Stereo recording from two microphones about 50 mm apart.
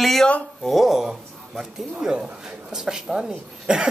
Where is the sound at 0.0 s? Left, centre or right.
Centre.